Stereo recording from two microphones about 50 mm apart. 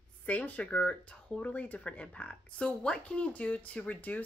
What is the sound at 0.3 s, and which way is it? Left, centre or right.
Speech, left.